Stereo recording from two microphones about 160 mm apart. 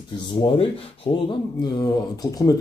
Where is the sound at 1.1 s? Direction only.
35° left (ahead or behind).